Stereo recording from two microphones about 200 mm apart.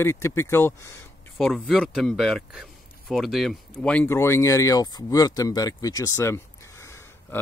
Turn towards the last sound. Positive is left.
turn(degrees=15)  # may be behind; listen again after turning